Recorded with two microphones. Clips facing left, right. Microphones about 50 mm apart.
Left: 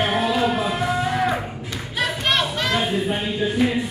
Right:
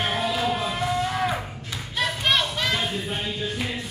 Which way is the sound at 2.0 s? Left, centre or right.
Centre.